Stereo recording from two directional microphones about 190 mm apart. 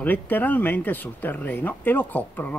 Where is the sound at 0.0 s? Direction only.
10° left (ahead or behind).